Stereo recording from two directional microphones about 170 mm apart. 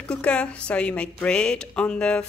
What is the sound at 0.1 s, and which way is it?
A woman's voice, 5° left (ahead or behind).